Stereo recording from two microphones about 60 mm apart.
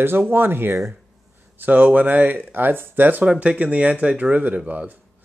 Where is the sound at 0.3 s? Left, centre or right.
Right.